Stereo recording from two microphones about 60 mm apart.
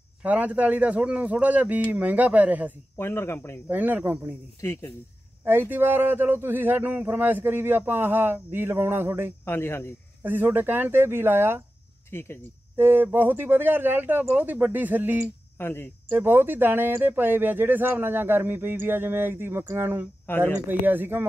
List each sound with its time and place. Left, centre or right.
0.2 s a man's voice: right
3.0 s speech: left
3.6 s speech: right
5.4 s speech: right
9.4 s speech: left
10.2 s speech: right
12.1 s speech: left
12.7 s speech: right
15.5 s speech: left
16.1 s speech: right
20.2 s speech: left
20.6 s speech: right